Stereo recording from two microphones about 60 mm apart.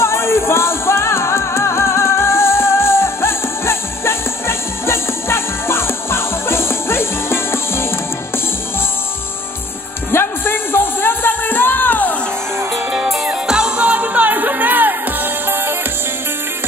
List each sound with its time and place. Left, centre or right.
0.0 s music: left
10.1 s music: left
13.2 s music: centre
13.8 s music: right